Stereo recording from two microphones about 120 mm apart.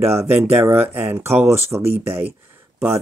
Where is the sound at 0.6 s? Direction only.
20° right (ahead or behind).